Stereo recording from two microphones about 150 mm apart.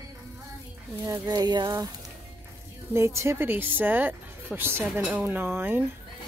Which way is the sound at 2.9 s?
20° right (ahead or behind).